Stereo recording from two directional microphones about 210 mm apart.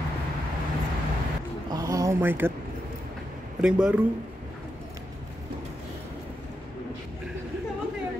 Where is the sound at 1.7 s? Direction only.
15° right (ahead or behind).